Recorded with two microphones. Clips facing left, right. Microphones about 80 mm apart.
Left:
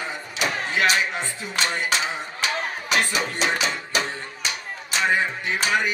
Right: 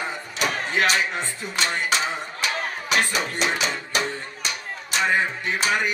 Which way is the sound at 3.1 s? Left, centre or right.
Right.